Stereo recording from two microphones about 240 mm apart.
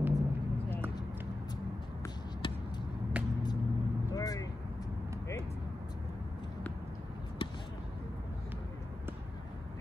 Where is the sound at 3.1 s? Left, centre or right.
Centre.